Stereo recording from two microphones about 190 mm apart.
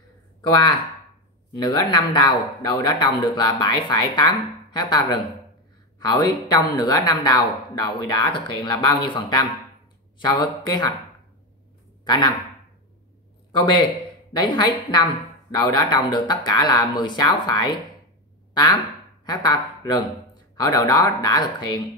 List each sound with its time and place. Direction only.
0.5 s speech: 25° left (ahead or behind)
12.0 s a man's voice: 20° left (ahead or behind)
14.3 s speech: 25° left (ahead or behind)
19.2 s speech: 20° left (ahead or behind)